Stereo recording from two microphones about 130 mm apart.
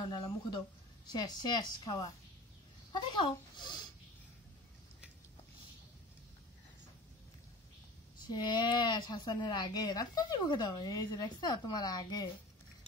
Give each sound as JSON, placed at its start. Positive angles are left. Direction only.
{"t": 0.0, "sound": "speech", "side_deg": 35}
{"t": 8.2, "sound": "speech", "side_deg": 35}